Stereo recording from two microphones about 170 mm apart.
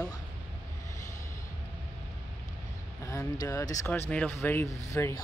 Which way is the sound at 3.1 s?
15° left (ahead or behind).